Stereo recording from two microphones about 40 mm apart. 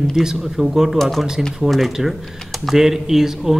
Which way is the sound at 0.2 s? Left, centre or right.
Centre.